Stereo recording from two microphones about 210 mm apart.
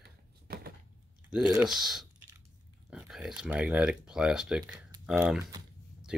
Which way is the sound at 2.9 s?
5° right (ahead or behind).